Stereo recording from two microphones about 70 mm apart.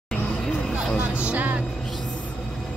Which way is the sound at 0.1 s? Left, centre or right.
Centre.